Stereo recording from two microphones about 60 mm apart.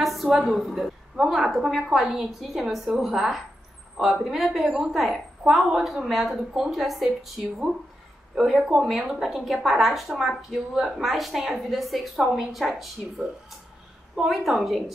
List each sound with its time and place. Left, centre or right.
0.0 s a sound: centre
0.5 s a woman's voice: centre
8.3 s a woman's voice: centre
13.2 s a woman's voice: centre